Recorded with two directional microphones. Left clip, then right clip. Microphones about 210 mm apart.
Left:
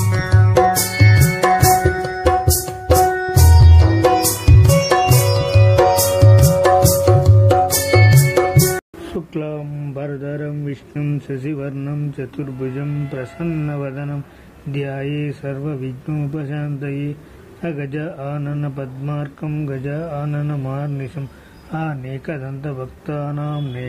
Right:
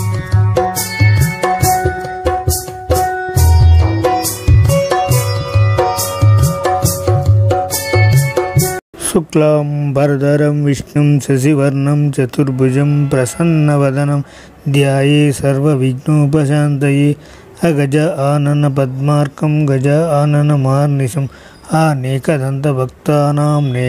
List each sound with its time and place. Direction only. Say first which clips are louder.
0.6 s tabla: left 1 dB; centre (ahead or behind)
9.1 s speech: right 14 dB; 50° right (ahead or behind)